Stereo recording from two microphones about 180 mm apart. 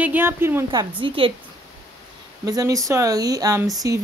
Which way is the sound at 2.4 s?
20° right (ahead or behind).